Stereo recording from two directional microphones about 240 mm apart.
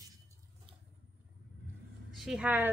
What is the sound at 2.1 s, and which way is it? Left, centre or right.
Speech, centre.